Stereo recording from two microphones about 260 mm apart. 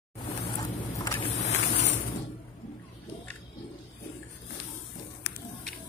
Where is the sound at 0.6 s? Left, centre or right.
Centre.